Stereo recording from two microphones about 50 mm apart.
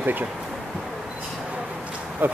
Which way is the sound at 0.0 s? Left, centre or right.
Right.